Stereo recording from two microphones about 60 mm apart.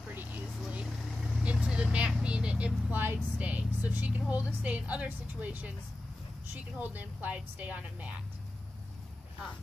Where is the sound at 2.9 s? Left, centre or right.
Right.